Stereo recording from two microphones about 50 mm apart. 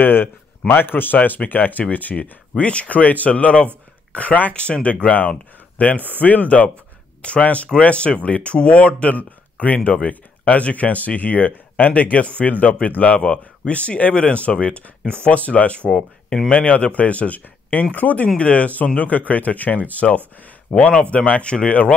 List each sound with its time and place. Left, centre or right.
0.0 s speech: left